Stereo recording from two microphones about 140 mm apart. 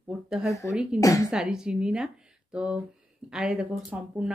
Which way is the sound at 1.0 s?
25° left (ahead or behind).